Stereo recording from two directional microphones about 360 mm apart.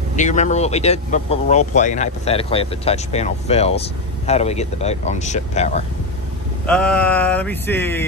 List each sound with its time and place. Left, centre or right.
0.1 s speech: centre
6.6 s speech: centre